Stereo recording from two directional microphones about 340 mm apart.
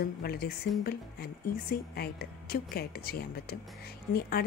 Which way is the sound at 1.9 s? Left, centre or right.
Left.